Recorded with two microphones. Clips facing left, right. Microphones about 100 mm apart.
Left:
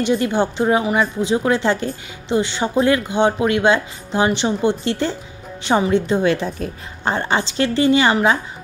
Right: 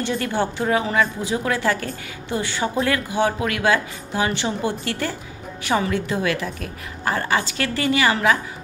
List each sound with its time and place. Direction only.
0.0 s a woman's voice: 20° left (ahead or behind)